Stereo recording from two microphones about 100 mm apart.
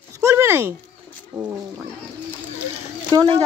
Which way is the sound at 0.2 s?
30° right (ahead or behind).